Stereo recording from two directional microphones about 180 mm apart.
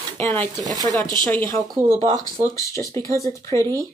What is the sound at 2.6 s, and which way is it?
Speech, 15° left (ahead or behind).